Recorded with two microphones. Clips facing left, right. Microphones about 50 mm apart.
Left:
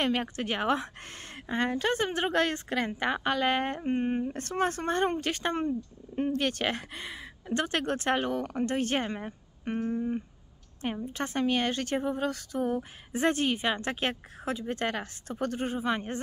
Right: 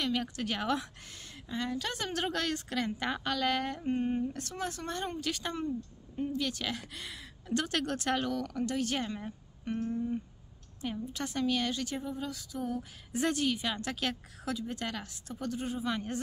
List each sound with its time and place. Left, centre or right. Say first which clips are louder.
0.0 s a woman's voice: left 4 dB; left
1.3 s a woman's voice: left 6 dB; left